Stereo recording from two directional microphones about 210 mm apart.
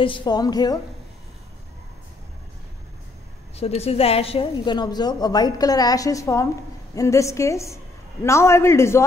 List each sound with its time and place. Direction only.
0.0 s a woman's voice: 25° left (ahead or behind)
3.5 s a woman's voice: 30° left (ahead or behind); by 9.0 s 10° left (ahead or behind)